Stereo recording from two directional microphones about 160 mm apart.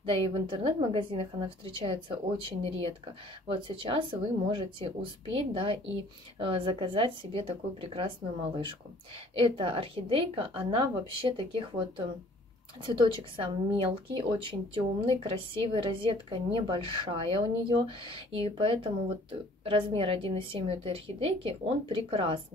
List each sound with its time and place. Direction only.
0.0 s a woman's voice: 35° right (ahead or behind)
9.3 s a woman's voice: 35° right (ahead or behind)
12.8 s a woman's voice: 30° right (ahead or behind)